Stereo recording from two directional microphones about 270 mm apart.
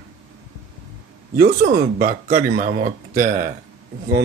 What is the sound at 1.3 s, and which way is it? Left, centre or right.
Speech, right.